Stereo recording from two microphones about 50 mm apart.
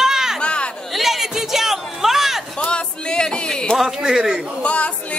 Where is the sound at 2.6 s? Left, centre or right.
Centre.